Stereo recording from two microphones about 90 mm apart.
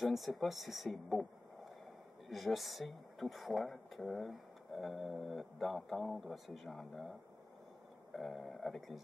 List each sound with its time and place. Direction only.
0.0 s speech: centre (ahead or behind)